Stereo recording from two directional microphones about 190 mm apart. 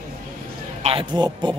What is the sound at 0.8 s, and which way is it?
Speech, 25° right (ahead or behind).